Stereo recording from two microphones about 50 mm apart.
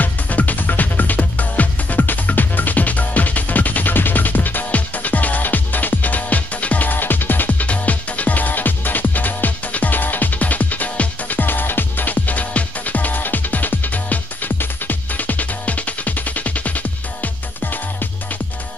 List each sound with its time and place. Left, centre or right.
0.0 s music: left